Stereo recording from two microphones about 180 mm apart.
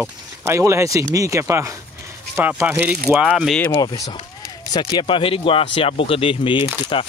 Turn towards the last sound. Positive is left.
turn(degrees=30)  # may be behind; listen again after turning